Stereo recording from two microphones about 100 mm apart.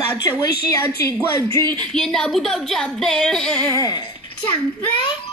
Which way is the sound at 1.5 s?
25° left (ahead or behind).